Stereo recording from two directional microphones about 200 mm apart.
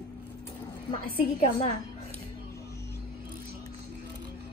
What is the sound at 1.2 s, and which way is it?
Speech, 30° left (ahead or behind).